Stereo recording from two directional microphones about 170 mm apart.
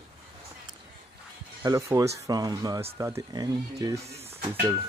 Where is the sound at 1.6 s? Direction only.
20° right (ahead or behind).